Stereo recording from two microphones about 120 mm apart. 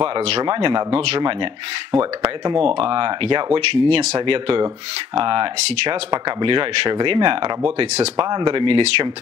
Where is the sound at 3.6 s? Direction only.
55° right (ahead or behind).